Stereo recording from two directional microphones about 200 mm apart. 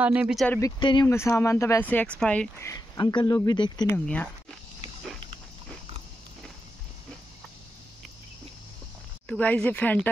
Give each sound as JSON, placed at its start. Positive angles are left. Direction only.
{"t": 0.0, "sound": "speech", "side_deg": -5}
{"t": 0.5, "sound": "speech", "side_deg": 15}
{"t": 3.8, "sound": "speech", "side_deg": 10}
{"t": 9.3, "sound": "speech", "side_deg": 5}